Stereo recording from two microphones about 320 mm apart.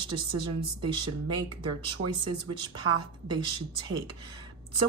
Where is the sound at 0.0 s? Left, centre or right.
Centre.